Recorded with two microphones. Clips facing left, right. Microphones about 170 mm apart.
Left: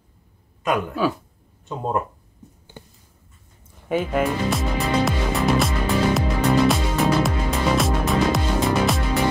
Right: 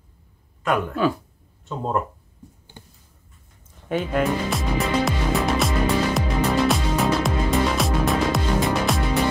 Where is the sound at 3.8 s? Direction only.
5° left (ahead or behind).